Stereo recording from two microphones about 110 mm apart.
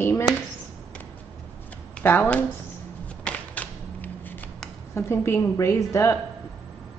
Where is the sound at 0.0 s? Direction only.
30° left (ahead or behind).